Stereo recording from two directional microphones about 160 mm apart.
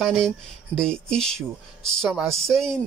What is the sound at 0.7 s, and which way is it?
Speech, 5° left (ahead or behind).